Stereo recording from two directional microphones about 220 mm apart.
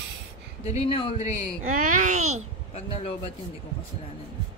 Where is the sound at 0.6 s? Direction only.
25° left (ahead or behind).